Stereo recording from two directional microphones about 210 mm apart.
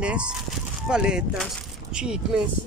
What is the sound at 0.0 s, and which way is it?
Speech, 5° right (ahead or behind).